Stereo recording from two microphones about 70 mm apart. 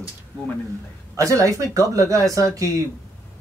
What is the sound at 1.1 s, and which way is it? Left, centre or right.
Speech, right.